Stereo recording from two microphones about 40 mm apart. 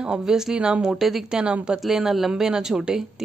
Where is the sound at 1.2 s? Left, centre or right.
Right.